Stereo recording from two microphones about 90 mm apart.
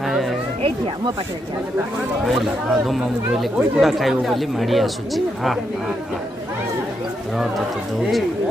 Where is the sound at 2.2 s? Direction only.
Centre (ahead or behind).